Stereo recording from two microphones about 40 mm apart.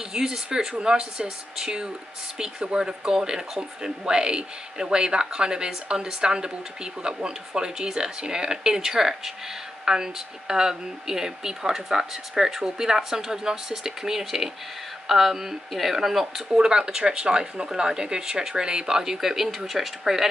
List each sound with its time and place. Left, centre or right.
0.1 s speech: centre
16.6 s speech: centre